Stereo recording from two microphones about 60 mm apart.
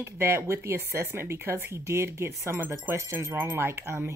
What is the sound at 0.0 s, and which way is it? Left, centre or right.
Speech, right.